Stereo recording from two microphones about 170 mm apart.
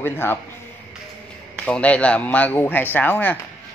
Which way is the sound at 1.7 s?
5° left (ahead or behind).